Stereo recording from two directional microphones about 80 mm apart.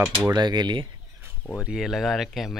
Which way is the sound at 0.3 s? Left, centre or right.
Right.